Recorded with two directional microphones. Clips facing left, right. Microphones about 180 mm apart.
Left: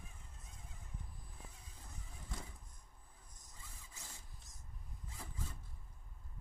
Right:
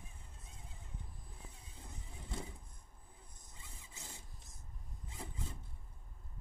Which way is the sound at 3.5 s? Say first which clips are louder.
Right 2 dB; 25° right (ahead or behind).